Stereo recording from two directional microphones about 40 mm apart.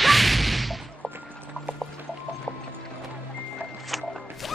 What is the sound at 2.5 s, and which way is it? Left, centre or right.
Music, centre.